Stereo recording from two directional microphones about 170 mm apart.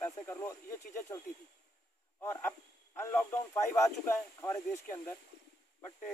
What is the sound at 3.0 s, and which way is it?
Speech, 15° left (ahead or behind).